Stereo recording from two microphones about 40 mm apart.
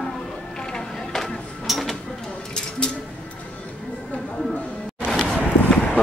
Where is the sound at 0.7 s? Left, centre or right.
Centre.